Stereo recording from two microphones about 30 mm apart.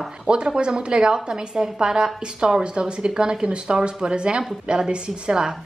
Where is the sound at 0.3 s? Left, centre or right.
Right.